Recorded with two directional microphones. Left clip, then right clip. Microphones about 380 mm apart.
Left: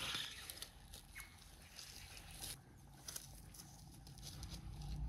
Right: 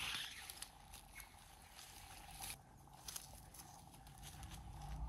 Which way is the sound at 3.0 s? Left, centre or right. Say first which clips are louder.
Even; centre.